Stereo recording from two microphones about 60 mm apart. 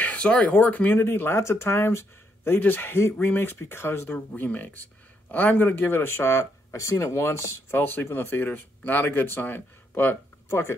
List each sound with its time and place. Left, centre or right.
0.0 s a sound: left
0.5 s speech: left
4.3 s speech: left